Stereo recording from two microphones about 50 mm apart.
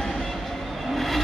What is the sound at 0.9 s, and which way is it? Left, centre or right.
Vehicle, centre.